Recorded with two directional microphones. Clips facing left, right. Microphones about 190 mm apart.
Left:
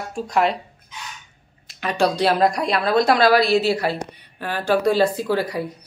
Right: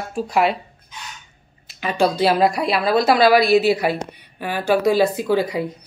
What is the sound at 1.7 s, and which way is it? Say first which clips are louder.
Speech: right 1 dB; centre (ahead or behind).